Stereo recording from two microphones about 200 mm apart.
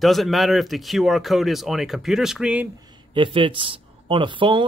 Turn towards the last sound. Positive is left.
turn(degrees=-25)  # may be behind; listen again after turning